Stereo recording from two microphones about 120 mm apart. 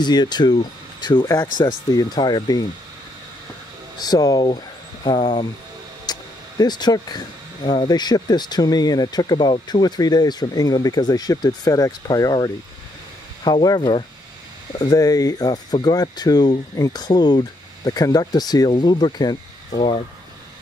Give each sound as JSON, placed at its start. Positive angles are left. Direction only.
{"t": 0.0, "sound": "speech", "side_deg": 35}
{"t": 4.0, "sound": "speech", "side_deg": 35}
{"t": 6.1, "sound": "a sound", "side_deg": 35}
{"t": 6.6, "sound": "speech", "side_deg": 35}